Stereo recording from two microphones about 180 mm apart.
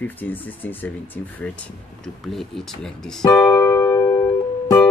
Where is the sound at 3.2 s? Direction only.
20° left (ahead or behind).